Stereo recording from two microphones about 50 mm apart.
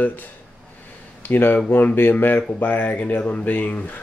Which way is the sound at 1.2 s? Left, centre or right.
Left.